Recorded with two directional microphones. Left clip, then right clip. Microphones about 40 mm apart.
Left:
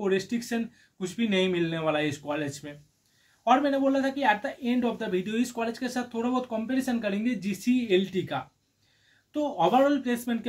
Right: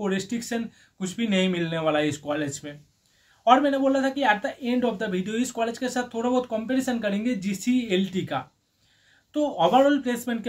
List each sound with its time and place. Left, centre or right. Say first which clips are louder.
0.0 s speech: left 1 dB; right
1.5 s speech: right 2 dB; right
9.3 s speech: right 3 dB; right
9.8 s speech: right 3 dB; right